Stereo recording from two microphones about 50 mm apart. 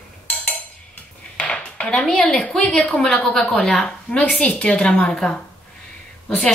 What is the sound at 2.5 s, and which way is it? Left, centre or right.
A woman's voice, centre.